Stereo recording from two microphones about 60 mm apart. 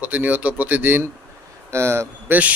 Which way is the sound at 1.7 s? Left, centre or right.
Right.